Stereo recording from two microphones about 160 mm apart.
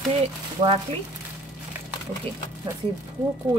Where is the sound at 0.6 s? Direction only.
35° right (ahead or behind).